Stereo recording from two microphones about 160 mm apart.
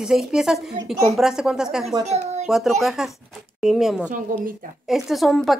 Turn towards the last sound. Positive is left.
turn(degrees=0)  # may be behind; listen again after turning